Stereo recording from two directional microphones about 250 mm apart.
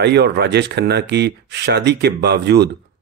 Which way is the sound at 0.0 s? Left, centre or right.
Right.